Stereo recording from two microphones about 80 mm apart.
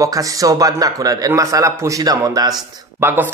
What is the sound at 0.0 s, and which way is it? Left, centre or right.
A man's voice, right.